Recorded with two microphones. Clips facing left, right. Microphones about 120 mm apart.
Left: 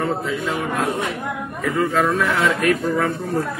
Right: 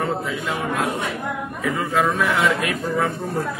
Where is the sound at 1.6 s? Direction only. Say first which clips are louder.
Left 2 dB; 5° right (ahead or behind).